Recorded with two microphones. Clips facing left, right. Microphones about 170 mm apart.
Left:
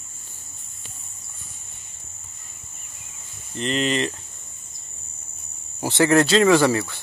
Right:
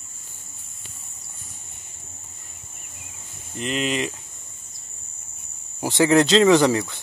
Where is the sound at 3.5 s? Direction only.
10° right (ahead or behind).